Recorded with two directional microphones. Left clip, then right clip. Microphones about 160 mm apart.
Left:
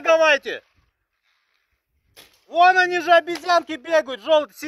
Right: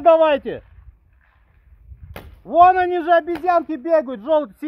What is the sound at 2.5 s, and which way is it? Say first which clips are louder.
A man's voice: right 3 dB; 15° left (ahead or behind).